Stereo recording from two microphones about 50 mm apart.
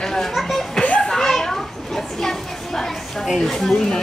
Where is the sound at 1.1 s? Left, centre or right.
Centre.